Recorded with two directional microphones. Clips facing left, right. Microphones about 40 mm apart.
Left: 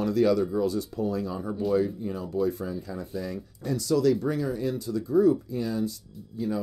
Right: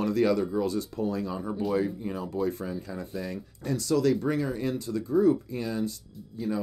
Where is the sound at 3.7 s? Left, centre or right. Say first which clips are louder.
Left 1 dB; right.